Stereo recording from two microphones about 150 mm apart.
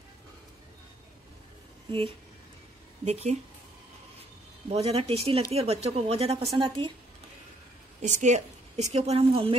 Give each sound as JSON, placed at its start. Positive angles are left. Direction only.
{"t": 1.9, "sound": "a woman's voice", "side_deg": -35}
{"t": 4.6, "sound": "a woman's voice", "side_deg": -40}
{"t": 8.0, "sound": "a woman's voice", "side_deg": -55}